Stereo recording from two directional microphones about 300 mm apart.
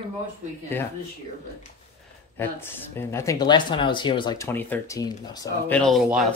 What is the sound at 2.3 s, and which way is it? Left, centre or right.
Speech, centre.